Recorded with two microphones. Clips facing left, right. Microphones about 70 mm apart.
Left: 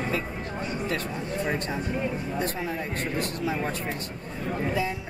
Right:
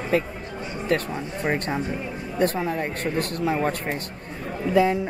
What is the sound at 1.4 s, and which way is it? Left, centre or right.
Speech, right.